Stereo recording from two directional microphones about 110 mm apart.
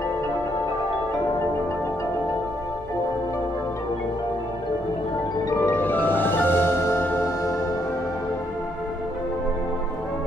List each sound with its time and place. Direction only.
5.6 s music: 20° left (ahead or behind)